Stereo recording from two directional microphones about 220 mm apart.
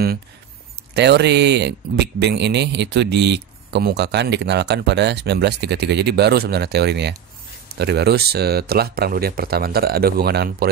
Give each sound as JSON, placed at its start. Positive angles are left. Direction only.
{"t": 0.9, "sound": "speech", "side_deg": -50}